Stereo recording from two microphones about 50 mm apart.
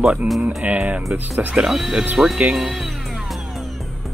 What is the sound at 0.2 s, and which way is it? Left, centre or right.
Speech, right.